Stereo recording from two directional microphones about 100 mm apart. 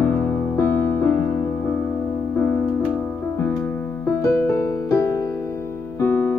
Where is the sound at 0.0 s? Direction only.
20° left (ahead or behind).